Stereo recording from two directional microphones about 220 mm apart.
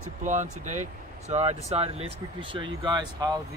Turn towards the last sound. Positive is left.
turn(degrees=-20)  # may be behind; listen again after turning